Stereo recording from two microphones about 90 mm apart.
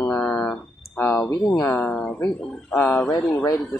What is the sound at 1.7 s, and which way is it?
Speech, 20° left (ahead or behind).